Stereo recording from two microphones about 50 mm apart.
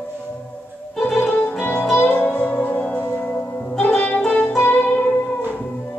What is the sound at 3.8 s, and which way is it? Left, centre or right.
Music, left.